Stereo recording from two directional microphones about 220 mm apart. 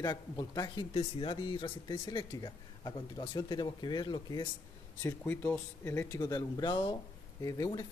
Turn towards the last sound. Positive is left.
turn(degrees=15)  # may be behind; listen again after turning